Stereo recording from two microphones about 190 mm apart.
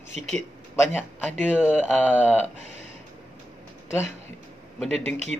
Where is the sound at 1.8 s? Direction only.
10° left (ahead or behind).